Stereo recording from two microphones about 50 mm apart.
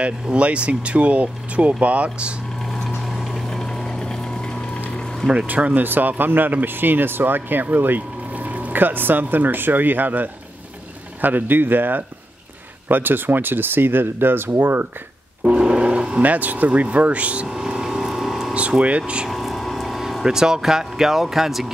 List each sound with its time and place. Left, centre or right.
0.0 s speech: right
3.1 s a sound: centre
5.5 s speech: right
15.4 s a sound: centre
16.2 s speech: right
17.5 s vehicle: centre
18.5 s speech: right
19.2 s vehicle: centre
20.2 s speech: centre